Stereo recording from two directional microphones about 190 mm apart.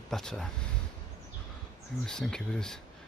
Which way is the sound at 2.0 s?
5° left (ahead or behind).